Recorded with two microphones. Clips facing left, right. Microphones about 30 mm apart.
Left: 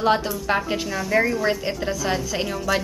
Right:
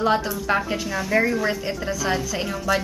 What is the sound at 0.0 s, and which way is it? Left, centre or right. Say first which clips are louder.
Speech: left 1 dB; centre.